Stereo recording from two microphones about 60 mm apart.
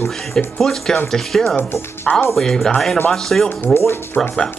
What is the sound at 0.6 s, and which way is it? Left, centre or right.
Speech, centre.